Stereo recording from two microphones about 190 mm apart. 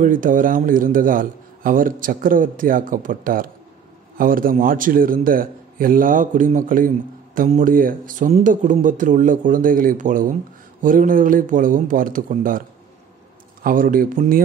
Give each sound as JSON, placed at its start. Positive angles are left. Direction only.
{"t": 0.0, "sound": "a man's voice", "side_deg": -45}
{"t": 13.7, "sound": "a man's voice", "side_deg": -45}